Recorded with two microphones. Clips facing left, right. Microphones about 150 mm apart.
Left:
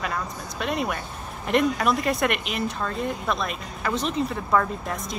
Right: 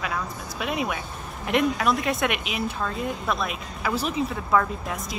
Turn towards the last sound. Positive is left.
turn(degrees=0)  # may be behind; listen again after turning